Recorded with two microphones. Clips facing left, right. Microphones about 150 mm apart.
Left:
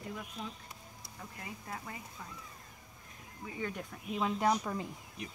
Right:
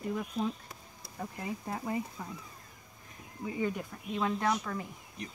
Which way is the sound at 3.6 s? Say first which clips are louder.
Right 6 dB; 5° right (ahead or behind).